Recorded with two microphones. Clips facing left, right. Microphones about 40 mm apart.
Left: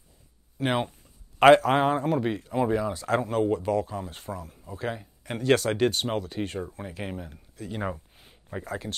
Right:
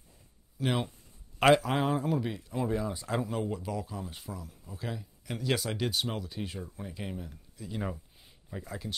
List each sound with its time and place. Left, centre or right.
0.6 s speech: left
2.9 s speech: left
3.2 s speech: left
7.0 s speech: left
7.7 s a sound: left
8.6 s speech: left